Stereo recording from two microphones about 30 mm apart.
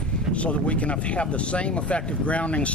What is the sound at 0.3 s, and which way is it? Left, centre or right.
Speech, left.